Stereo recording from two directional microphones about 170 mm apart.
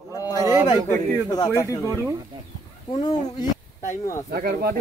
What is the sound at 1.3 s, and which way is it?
Speech, 20° left (ahead or behind).